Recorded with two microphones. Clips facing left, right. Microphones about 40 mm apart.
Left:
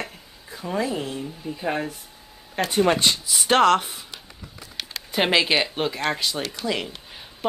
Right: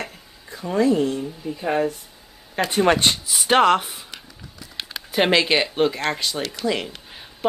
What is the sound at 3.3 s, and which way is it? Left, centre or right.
Speech, centre.